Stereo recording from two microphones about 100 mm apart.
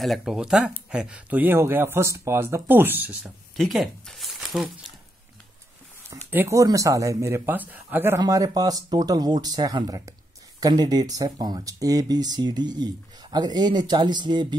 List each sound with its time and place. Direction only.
0.0 s speech: centre (ahead or behind)
3.5 s speech: centre (ahead or behind)
6.0 s speech: 25° right (ahead or behind)
8.2 s speech: 40° right (ahead or behind)